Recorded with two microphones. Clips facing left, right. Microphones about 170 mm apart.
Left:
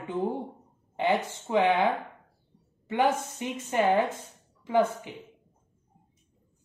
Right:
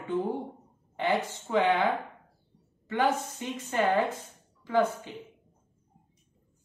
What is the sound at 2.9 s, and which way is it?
A woman's voice, 20° left (ahead or behind).